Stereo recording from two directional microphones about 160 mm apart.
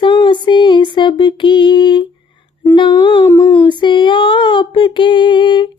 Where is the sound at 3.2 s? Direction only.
20° left (ahead or behind).